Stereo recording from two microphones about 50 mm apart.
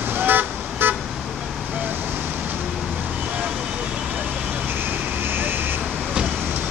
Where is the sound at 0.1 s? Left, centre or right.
Right.